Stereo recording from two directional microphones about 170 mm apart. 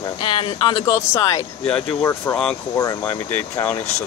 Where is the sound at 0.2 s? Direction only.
30° left (ahead or behind).